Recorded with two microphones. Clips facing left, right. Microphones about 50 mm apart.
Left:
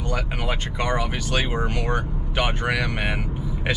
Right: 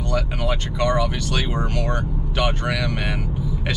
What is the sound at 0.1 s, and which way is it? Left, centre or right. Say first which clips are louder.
Speech: right 3 dB; centre.